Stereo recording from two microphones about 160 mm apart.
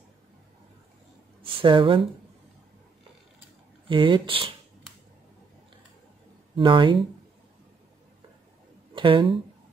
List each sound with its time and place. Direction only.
1.4 s speech: 30° right (ahead or behind)
3.9 s speech: 30° right (ahead or behind)
6.5 s speech: 30° right (ahead or behind)
8.9 s speech: 30° right (ahead or behind)